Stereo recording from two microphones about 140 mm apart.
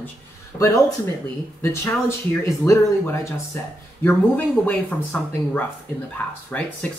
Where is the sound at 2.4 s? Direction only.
20° left (ahead or behind).